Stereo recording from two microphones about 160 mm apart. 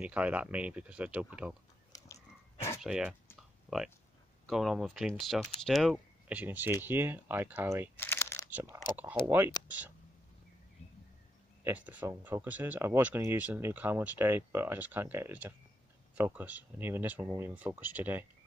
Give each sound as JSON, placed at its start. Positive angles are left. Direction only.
{"t": 0.0, "sound": "speech", "side_deg": -10}
{"t": 2.8, "sound": "speech", "side_deg": -5}
{"t": 7.9, "sound": "crunch", "side_deg": 15}
{"t": 8.5, "sound": "speech", "side_deg": -10}
{"t": 11.6, "sound": "speech", "side_deg": -10}